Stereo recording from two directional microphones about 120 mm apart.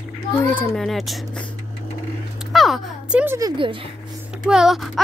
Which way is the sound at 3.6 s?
45° right (ahead or behind).